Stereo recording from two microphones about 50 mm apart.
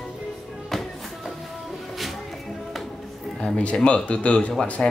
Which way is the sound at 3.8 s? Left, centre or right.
Left.